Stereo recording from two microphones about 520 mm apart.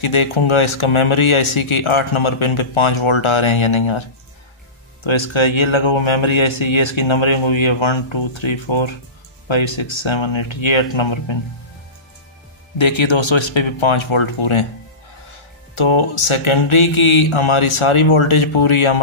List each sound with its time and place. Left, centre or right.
0.0 s speech: left
12.7 s speech: left
15.7 s speech: left